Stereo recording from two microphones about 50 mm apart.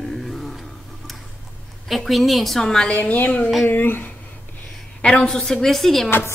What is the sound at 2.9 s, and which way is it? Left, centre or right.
A woman's voice, left.